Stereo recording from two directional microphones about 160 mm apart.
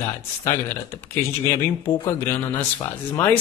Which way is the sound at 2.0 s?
15° left (ahead or behind).